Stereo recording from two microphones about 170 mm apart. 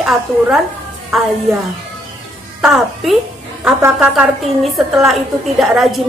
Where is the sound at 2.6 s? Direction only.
Centre (ahead or behind).